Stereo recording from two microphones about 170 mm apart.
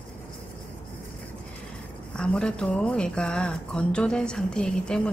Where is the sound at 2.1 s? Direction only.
5° left (ahead or behind).